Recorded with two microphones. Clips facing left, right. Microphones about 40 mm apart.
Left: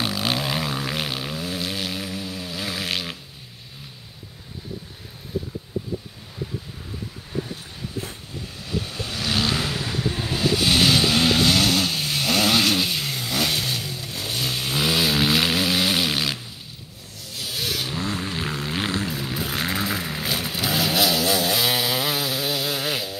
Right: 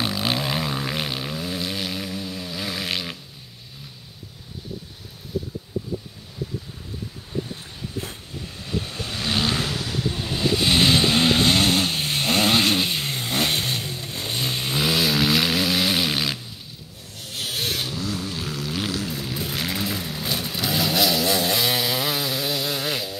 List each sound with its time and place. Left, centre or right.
0.0 s a sound: centre
7.5 s vehicle: centre
9.7 s vehicle: left
10.3 s vehicle: centre
17.2 s vehicle: right
17.8 s vehicle: left
19.2 s vehicle: left
19.6 s vehicle: left
20.0 s vehicle: left
20.2 s vehicle: centre